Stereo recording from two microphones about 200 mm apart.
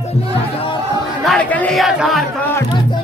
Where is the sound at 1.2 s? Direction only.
5° left (ahead or behind).